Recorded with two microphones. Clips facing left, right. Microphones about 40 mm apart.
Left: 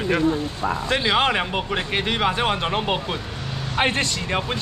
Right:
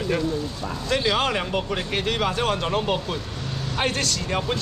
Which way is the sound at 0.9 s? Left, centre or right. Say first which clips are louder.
Left 1 dB; left.